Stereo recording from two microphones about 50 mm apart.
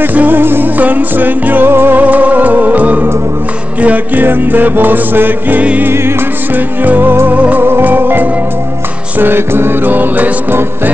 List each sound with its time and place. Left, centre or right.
0.0 s music: right
2.0 s music: right
5.6 s music: right
5.9 s music: right
7.6 s music: right
9.9 s music: right